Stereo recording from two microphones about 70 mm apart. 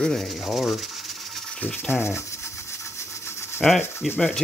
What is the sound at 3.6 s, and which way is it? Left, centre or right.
Rub, centre.